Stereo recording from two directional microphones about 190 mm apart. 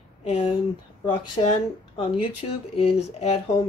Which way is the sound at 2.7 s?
30° left (ahead or behind).